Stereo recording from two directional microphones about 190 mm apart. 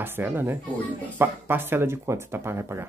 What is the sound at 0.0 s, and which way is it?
Speech, 10° right (ahead or behind).